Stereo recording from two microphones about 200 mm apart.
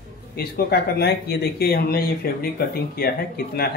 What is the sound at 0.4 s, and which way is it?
A man's voice, 50° left (ahead or behind).